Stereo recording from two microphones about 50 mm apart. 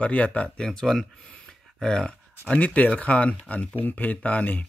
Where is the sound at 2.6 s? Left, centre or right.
Left.